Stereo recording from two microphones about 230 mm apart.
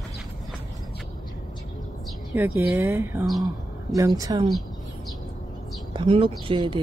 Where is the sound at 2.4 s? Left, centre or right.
Centre.